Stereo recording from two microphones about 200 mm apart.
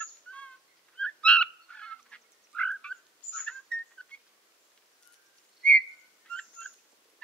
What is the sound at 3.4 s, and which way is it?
Bird, 5° left (ahead or behind).